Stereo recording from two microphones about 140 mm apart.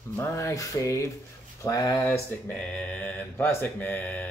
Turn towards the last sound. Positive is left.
turn(degrees=10)  # may be behind; listen again after turning